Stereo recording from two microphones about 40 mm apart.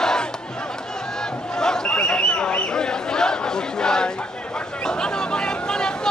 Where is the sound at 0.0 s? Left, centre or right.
Centre.